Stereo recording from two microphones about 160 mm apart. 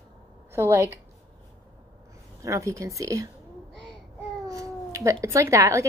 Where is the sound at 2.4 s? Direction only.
20° right (ahead or behind).